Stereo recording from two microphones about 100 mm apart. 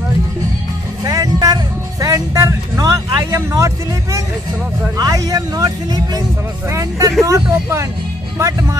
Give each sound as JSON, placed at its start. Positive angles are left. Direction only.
{"t": 1.0, "sound": "music", "side_deg": -40}
{"t": 4.9, "sound": "speech", "side_deg": -40}
{"t": 6.7, "sound": "speech", "side_deg": -30}